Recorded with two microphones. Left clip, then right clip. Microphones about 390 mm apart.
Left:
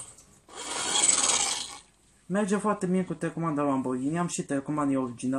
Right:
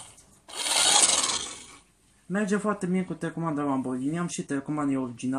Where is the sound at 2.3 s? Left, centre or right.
Centre.